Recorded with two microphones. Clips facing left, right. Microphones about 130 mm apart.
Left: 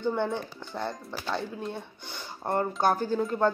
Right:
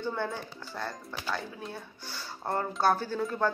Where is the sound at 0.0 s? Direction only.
20° left (ahead or behind).